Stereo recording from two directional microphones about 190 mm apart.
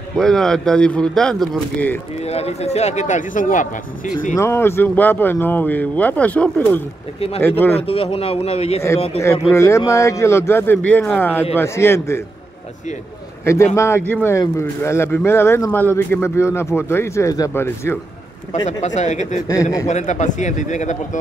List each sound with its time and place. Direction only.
0.1 s speech: 5° left (ahead or behind)
2.2 s a man's voice: 35° left (ahead or behind)
4.4 s speech: 15° left (ahead or behind)
7.2 s a man's voice: 30° left (ahead or behind)
7.4 s speech: 10° left (ahead or behind)
7.7 s a man's voice: 30° left (ahead or behind)
9.5 s speech: 15° left (ahead or behind)
13.7 s speech: 15° left (ahead or behind)
18.7 s a man's voice: 40° left (ahead or behind)
19.4 s speech: 15° left (ahead or behind)
19.9 s a man's voice: 40° left (ahead or behind)